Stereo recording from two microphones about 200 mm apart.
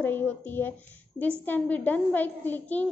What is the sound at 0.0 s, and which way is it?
A woman's voice, 10° left (ahead or behind).